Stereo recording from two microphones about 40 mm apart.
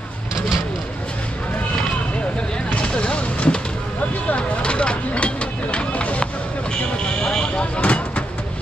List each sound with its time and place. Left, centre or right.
2.8 s vehicle: left
4.4 s a sound: left
7.2 s vehicle: left